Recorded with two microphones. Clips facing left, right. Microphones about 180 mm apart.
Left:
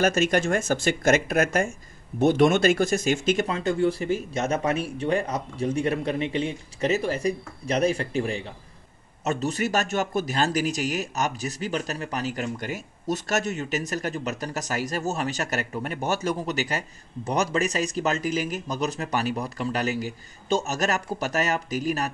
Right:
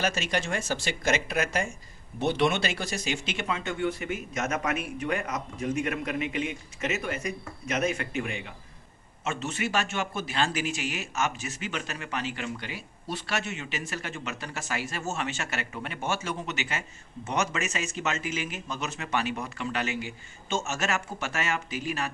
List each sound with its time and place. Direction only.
0.0 s speech: 50° left (ahead or behind)